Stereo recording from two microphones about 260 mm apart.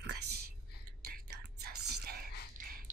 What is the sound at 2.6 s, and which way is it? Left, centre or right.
Music, right.